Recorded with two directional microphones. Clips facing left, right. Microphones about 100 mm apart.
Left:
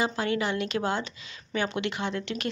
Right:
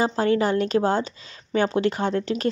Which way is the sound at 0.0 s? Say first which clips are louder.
Right 7 dB; 40° right (ahead or behind).